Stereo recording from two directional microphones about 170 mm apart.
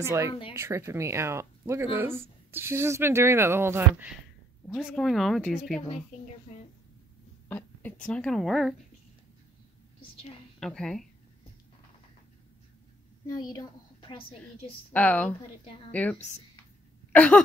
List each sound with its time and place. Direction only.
0.0 s speech: 15° right (ahead or behind)
0.3 s speech: 30° left (ahead or behind)
0.6 s speech: 15° right (ahead or behind)
4.6 s speech: centre (ahead or behind)
7.4 s speech: 10° left (ahead or behind)
10.6 s speech: 5° left (ahead or behind)
13.3 s a woman's voice: 20° left (ahead or behind)
14.9 s a woman's voice: 10° left (ahead or behind)
17.1 s throat clearing: 5° left (ahead or behind)